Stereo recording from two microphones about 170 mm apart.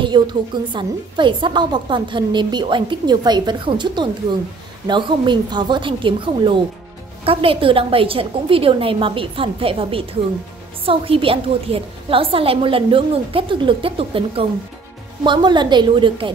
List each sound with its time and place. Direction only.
0.0 s a woman's voice: 25° right (ahead or behind)